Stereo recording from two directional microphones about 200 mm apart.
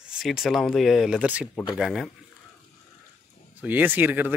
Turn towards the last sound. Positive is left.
turn(degrees=-10)  # may be behind; listen again after turning